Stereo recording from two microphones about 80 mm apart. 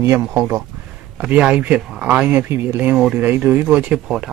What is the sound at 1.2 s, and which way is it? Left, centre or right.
Speech, centre.